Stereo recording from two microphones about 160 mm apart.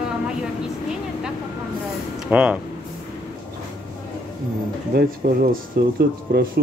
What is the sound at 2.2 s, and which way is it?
Speech, 10° right (ahead or behind).